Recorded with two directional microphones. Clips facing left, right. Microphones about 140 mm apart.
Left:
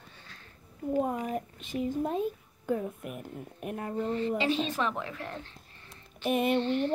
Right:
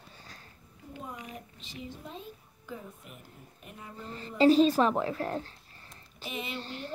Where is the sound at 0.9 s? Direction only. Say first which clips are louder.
Left 13 dB; 45° left (ahead or behind).